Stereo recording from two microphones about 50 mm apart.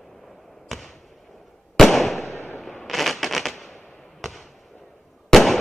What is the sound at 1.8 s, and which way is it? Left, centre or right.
Fireworks, centre.